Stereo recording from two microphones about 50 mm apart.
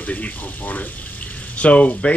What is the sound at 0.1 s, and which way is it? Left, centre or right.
Speech, left.